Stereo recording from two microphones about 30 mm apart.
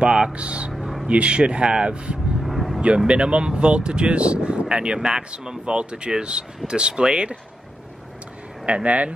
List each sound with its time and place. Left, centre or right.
0.0 s speech: right
0.3 s speech: right
2.4 s vehicle: centre
3.1 s speech: right
5.8 s speech: right
8.6 s speech: right